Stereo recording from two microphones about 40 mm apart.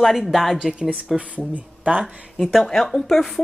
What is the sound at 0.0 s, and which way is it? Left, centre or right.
Speech, centre.